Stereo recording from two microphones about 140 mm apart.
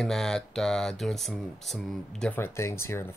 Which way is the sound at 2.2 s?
15° left (ahead or behind).